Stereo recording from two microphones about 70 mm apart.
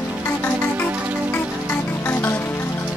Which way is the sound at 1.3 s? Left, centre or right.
Left.